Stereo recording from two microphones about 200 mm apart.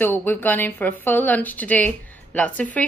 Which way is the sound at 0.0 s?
10° left (ahead or behind).